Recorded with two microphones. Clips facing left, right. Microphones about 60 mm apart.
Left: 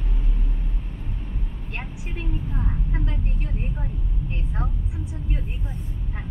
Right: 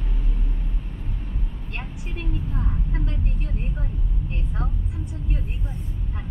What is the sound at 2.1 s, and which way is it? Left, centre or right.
Vehicle, left.